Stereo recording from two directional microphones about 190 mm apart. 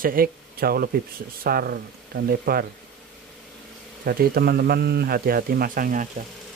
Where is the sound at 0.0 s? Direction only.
50° right (ahead or behind).